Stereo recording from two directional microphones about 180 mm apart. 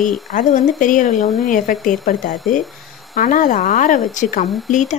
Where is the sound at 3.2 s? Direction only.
45° left (ahead or behind).